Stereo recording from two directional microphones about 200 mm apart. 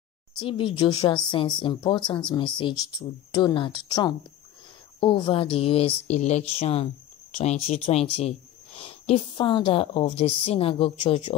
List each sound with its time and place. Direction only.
0.4 s speech: 25° left (ahead or behind)